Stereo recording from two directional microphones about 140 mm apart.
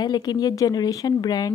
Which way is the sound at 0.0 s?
30° left (ahead or behind).